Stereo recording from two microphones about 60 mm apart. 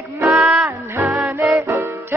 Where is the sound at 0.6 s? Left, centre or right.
Right.